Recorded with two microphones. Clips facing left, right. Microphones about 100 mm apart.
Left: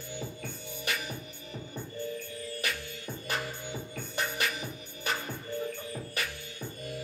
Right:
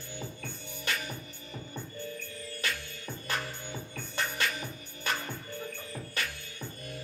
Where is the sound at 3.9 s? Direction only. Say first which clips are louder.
Even; 10° left (ahead or behind).